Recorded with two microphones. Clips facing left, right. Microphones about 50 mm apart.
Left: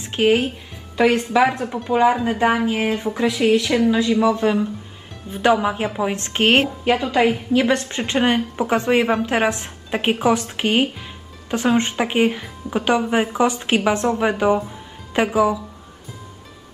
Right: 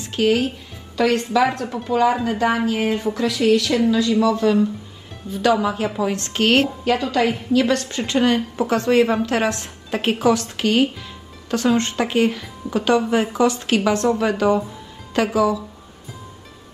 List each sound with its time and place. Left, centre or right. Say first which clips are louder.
0.0 s a woman's voice: left 1 dB; left